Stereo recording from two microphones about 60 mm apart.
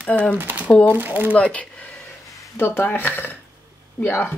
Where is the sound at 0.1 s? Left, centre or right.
Left.